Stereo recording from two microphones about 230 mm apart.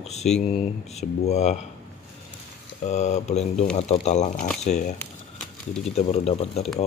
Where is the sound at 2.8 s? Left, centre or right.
Left.